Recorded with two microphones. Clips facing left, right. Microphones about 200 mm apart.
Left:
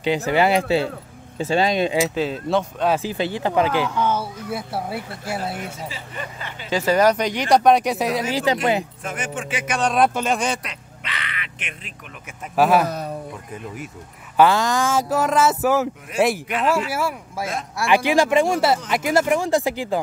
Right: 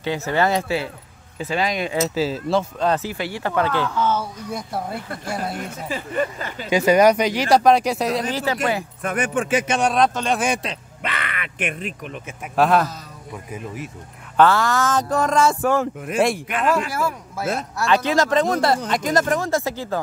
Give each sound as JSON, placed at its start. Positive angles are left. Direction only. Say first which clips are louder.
{"t": 0.0, "sound": "speech", "louder": "left 2 dB", "side_deg": 15}
{"t": 1.4, "sound": "speech", "louder": "left 4 dB", "side_deg": 30}
{"t": 2.0, "sound": "speech", "louder": "right 1 dB", "side_deg": -5}
{"t": 3.0, "sound": "speech", "louder": "left 3 dB", "side_deg": 20}
{"t": 5.9, "sound": "speech", "louder": "right 9 dB", "side_deg": -45}
{"t": 6.7, "sound": "speech", "louder": "right 3 dB", "side_deg": -15}
{"t": 8.3, "sound": "speech", "louder": "left 3 dB", "side_deg": 15}
{"t": 9.0, "sound": "speech", "louder": "right 6 dB", "side_deg": -60}
{"t": 9.9, "sound": "speech", "louder": "even", "side_deg": 5}
{"t": 11.0, "sound": "a sound", "louder": "right 4 dB", "side_deg": -55}
{"t": 12.5, "sound": "speech", "louder": "left 1 dB", "side_deg": 5}
{"t": 12.8, "sound": "a man's voice", "louder": "left 6 dB", "side_deg": 60}
{"t": 14.3, "sound": "speech", "louder": "even", "side_deg": 15}